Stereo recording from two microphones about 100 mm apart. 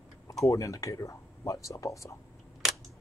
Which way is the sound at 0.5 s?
30° left (ahead or behind).